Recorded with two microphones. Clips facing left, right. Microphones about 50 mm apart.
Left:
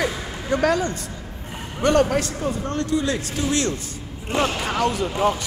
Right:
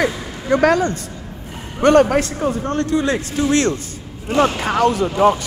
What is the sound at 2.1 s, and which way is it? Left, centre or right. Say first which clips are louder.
A man's voice: right 5 dB; right.